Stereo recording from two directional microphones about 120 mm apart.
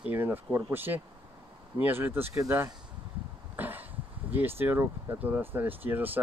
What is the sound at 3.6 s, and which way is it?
Cough, 15° right (ahead or behind).